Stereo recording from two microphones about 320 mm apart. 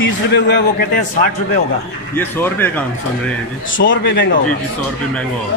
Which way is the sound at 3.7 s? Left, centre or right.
Left.